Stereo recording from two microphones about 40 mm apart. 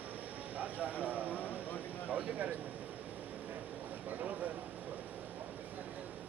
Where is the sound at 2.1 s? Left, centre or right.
Right.